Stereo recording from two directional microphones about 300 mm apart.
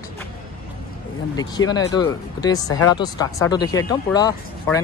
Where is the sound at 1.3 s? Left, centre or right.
Centre.